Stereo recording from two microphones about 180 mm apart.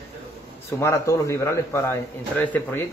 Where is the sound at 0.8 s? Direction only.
15° left (ahead or behind).